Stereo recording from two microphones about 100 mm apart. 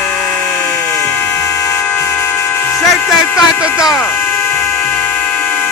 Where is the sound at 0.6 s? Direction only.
20° left (ahead or behind).